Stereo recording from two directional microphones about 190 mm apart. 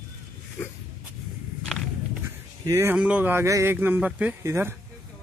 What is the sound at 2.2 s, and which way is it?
Speech, 15° right (ahead or behind).